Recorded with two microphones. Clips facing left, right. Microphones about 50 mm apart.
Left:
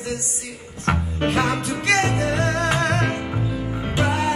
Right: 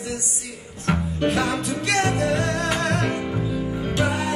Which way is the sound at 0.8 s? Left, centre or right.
Centre.